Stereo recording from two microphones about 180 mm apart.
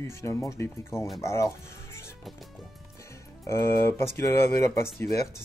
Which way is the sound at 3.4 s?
15° left (ahead or behind).